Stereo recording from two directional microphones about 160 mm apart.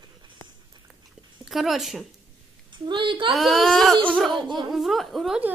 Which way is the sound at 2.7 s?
30° right (ahead or behind).